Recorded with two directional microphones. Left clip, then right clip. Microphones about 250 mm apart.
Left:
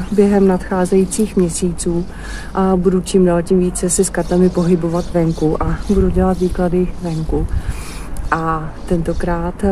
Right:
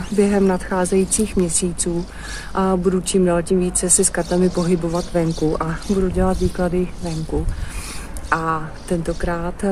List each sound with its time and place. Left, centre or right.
0.2 s speech: centre
8.3 s speech: centre